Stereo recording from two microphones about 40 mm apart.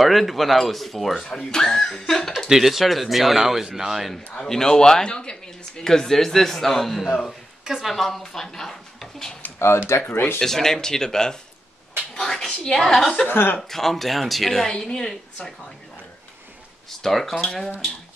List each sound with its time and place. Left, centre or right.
0.0 s speech: centre
1.2 s a man's voice: centre
2.3 s speech: centre
4.5 s a man's voice: centre
5.9 s a man's voice: centre
9.7 s speech: left
10.4 s a man's voice: centre
13.3 s speech: left
13.6 s speech: centre
14.7 s a man's voice: centre
17.0 s a man's voice: centre